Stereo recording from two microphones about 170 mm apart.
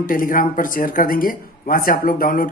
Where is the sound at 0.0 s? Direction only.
55° left (ahead or behind).